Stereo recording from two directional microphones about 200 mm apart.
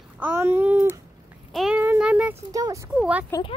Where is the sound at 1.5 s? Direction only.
Centre (ahead or behind).